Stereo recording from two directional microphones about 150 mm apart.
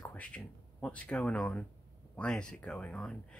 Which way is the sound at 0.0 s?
10° left (ahead or behind).